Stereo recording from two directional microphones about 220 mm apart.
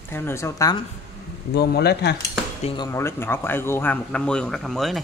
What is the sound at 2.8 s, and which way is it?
Speech, 10° left (ahead or behind).